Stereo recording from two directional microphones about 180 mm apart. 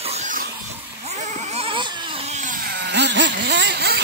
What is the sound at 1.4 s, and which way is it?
Vehicle, 35° right (ahead or behind).